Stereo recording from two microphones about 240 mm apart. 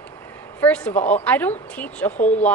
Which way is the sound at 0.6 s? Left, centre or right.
Centre.